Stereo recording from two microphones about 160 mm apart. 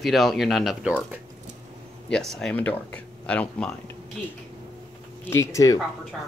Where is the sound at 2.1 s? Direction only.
5° left (ahead or behind).